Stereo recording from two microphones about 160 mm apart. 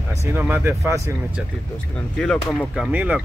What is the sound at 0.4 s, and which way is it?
Speech, 15° right (ahead or behind).